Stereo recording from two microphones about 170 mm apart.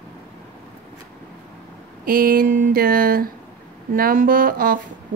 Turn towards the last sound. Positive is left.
turn(degrees=-60)  # may be behind; listen again after turning